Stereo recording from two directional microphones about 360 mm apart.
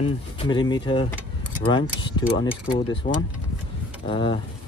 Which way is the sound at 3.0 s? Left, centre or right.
Left.